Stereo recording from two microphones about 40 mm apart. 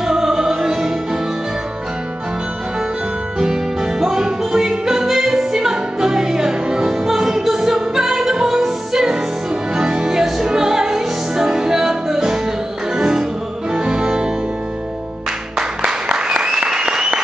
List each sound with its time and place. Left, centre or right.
0.0 s music: centre
3.3 s music: centre
15.5 s music: right
16.6 s applause: centre